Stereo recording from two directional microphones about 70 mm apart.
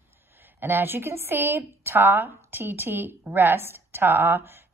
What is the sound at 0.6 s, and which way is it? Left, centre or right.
A woman's voice, right.